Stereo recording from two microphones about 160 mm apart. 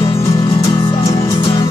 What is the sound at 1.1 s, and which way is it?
Music, 20° left (ahead or behind).